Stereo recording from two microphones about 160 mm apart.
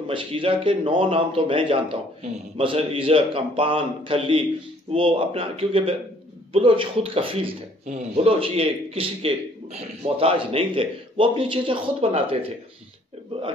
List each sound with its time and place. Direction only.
0.1 s speech: 35° right (ahead or behind)